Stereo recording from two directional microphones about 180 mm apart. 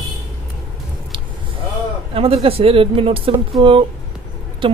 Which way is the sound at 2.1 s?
30° right (ahead or behind).